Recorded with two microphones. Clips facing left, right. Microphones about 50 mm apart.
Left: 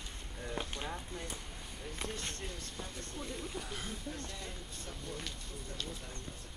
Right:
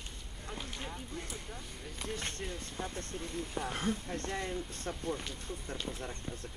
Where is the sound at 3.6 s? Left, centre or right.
Right.